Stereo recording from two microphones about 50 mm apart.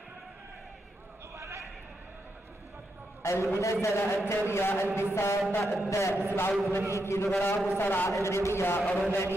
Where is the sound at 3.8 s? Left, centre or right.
Left.